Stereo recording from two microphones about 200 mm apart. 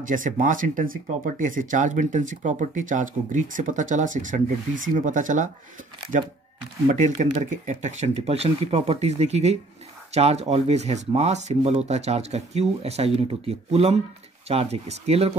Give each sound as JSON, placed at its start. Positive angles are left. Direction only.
{"t": 0.0, "sound": "speech", "side_deg": -40}
{"t": 6.9, "sound": "speech", "side_deg": -35}